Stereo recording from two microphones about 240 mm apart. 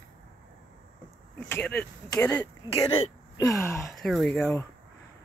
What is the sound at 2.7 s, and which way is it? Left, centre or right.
Speech, left.